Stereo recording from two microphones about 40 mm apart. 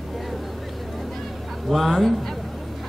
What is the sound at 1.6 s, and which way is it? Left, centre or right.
Speech, centre.